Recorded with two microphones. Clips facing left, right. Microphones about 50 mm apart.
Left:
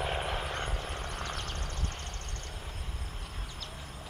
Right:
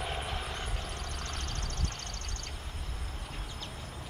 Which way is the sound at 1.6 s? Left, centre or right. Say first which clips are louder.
Even; right.